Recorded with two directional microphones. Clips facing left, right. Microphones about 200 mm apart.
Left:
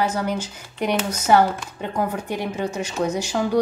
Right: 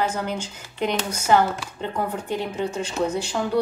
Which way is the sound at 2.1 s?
10° left (ahead or behind).